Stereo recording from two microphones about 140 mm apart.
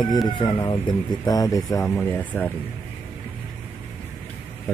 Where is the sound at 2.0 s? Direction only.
10° left (ahead or behind).